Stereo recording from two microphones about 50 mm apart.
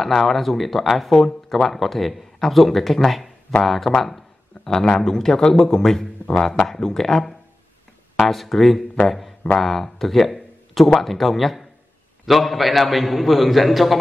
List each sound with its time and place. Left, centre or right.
0.0 s speech: centre
4.6 s a sound: left
4.9 s a man's voice: centre
6.7 s a man's voice: centre